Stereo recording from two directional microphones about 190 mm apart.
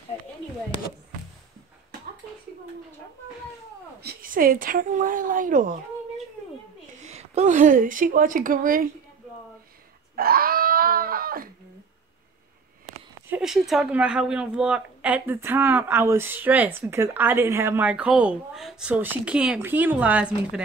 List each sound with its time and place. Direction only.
4.0 s a woman's voice: 50° right (ahead or behind)
6.9 s a woman's voice: 35° right (ahead or behind)
10.1 s screaming: 50° right (ahead or behind)
13.3 s a woman's voice: centre (ahead or behind)